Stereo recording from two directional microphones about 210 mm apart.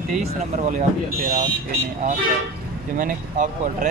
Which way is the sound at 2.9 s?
40° right (ahead or behind).